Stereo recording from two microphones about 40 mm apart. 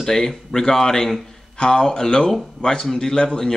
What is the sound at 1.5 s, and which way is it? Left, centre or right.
Speech, centre.